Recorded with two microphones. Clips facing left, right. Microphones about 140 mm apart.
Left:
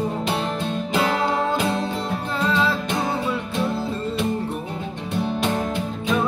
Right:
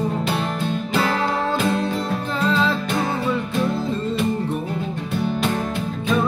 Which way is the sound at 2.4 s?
10° left (ahead or behind).